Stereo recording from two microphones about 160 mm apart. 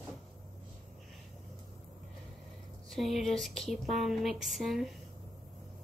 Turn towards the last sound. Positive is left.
turn(degrees=0)  # may be behind; listen again after turning